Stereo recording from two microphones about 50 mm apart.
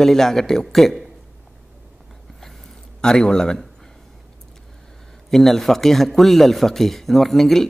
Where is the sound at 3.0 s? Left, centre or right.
Centre.